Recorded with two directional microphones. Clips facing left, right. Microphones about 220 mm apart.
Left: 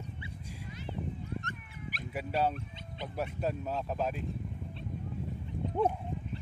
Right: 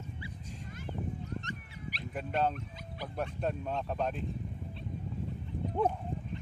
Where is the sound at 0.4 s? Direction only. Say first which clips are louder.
Even; 10° left (ahead or behind).